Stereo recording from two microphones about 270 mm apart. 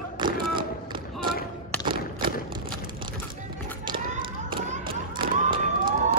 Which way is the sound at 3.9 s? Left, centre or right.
Right.